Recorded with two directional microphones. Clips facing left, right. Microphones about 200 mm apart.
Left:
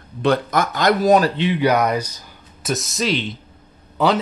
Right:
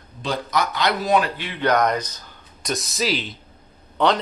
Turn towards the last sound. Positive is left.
turn(degrees=5)  # may be behind; listen again after turning